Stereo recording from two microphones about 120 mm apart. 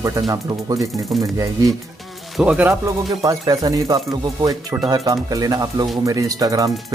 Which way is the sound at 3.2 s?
30° right (ahead or behind).